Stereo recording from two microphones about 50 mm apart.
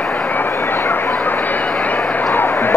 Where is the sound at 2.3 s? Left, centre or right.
Left.